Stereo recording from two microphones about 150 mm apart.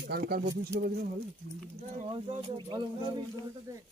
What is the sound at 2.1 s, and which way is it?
Speech, 35° right (ahead or behind).